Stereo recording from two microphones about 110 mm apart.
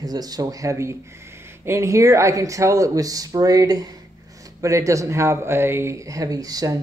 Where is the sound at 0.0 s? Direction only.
35° right (ahead or behind).